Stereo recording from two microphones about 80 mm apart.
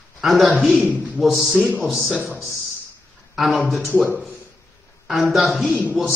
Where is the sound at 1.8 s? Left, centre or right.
Centre.